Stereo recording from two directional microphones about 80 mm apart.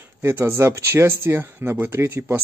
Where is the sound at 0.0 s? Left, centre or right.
Right.